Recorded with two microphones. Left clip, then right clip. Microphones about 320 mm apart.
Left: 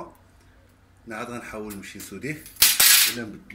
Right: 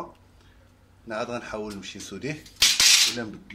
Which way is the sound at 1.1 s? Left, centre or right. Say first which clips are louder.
Right 3 dB; centre.